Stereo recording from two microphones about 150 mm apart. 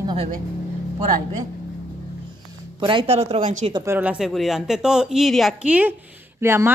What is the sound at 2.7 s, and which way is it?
Speech, 35° right (ahead or behind).